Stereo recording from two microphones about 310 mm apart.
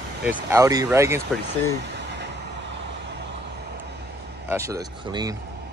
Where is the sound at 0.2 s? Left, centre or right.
Centre.